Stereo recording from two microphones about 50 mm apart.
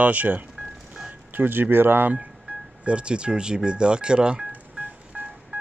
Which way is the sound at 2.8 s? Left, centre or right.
Right.